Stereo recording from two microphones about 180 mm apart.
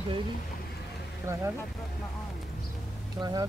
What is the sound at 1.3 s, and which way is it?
Speech, 15° right (ahead or behind).